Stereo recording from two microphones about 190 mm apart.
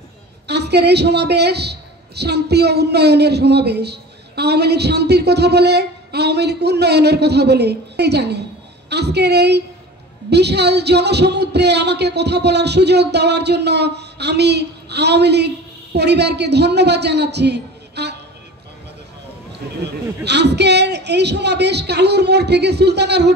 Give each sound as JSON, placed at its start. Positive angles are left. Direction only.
{"t": 0.5, "sound": "a man's voice", "side_deg": -60}
{"t": 20.2, "sound": "a man's voice", "side_deg": -60}